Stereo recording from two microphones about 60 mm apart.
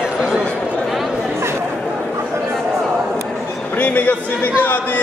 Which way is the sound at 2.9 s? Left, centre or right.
Centre.